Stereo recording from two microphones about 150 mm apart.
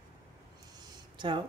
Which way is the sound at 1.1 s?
30° right (ahead or behind).